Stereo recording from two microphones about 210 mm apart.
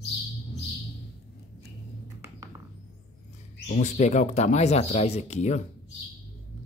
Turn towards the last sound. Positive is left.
turn(degrees=35)  # may be behind; listen again after turning